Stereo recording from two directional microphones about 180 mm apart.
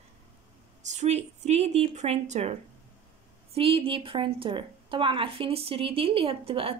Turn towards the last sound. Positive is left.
turn(degrees=-30)  # may be behind; listen again after turning